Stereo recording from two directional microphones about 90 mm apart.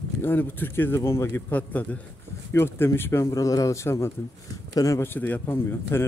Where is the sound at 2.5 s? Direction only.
30° left (ahead or behind).